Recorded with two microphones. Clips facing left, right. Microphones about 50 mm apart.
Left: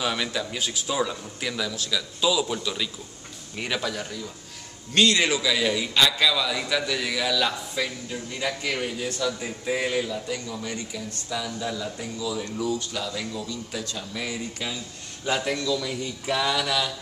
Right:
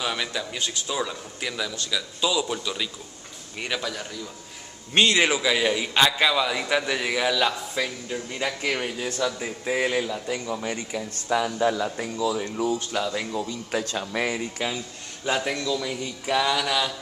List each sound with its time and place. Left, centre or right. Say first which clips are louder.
0.0 s a man's voice: left 1 dB; centre
4.9 s a man's voice: right 1 dB; right
10.2 s a man's voice: right 3 dB; right
11.2 s speech: right 8 dB; right
12.4 s speech: right 2 dB; right
13.7 s speech: right 6 dB; right
14.3 s a man's voice: right 3 dB; right
15.2 s speech: even; centre